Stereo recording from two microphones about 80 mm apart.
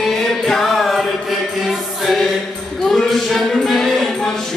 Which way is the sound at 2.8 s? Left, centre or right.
Centre.